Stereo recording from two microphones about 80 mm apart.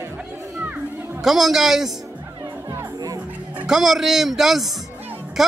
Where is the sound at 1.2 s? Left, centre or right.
Centre.